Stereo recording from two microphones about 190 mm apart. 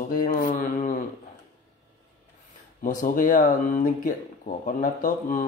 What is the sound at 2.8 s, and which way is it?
Speech, 45° left (ahead or behind).